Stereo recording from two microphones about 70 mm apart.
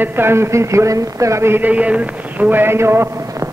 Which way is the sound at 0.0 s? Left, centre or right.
Right.